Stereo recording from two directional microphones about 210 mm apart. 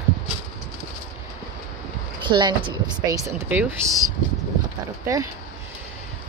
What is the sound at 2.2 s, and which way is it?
Speech, 20° right (ahead or behind).